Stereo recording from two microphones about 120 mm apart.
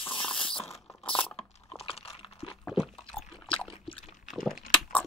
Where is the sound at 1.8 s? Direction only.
55° left (ahead or behind).